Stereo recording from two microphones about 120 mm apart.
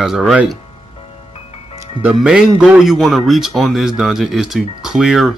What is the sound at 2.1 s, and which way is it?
A man's voice, 5° right (ahead or behind).